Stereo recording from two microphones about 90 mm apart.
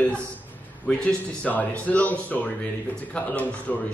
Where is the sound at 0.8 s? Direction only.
15° left (ahead or behind).